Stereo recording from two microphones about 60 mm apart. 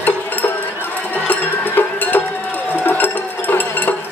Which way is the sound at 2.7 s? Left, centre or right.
Left.